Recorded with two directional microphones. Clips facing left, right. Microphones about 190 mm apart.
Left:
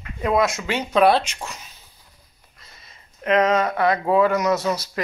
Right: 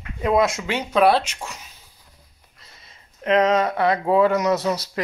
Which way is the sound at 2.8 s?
25° right (ahead or behind).